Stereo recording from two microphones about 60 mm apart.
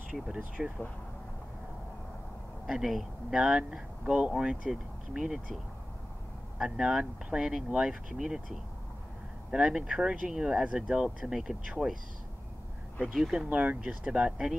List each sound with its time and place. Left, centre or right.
0.6 s speech: centre
2.6 s speech: centre
6.6 s speech: centre
9.5 s speech: centre
13.1 s speech: centre
13.5 s speech: right